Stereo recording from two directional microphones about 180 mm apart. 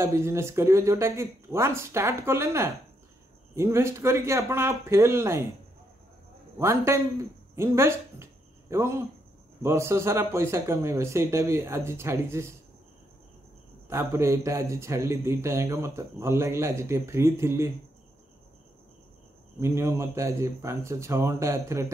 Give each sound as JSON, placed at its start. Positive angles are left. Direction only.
{"t": 0.0, "sound": "a man's voice", "side_deg": -15}
{"t": 6.6, "sound": "a man's voice", "side_deg": -15}
{"t": 13.8, "sound": "a man's voice", "side_deg": -15}
{"t": 19.6, "sound": "a man's voice", "side_deg": -15}